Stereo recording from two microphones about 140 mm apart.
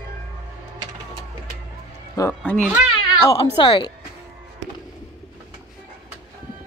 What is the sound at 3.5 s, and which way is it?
Speech, 35° left (ahead or behind).